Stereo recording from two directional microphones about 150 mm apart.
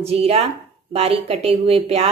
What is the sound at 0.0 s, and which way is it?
A woman's voice, 40° right (ahead or behind).